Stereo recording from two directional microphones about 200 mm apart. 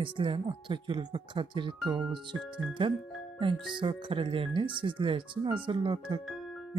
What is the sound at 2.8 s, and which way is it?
Speech, 25° right (ahead or behind).